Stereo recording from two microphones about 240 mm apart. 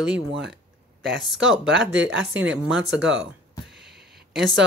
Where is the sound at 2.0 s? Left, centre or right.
Right.